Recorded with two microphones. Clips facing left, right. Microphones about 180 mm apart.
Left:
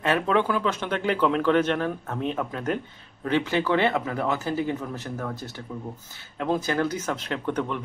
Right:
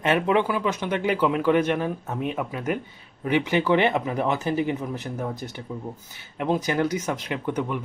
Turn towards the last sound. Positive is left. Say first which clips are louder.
# right 1 dB
turn(degrees=-10)  # may be behind; listen again after turning